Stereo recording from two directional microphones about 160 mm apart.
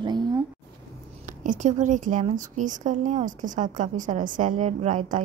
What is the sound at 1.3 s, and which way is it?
A woman's voice, 55° right (ahead or behind).